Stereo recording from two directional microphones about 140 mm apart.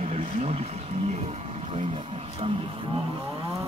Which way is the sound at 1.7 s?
40° right (ahead or behind).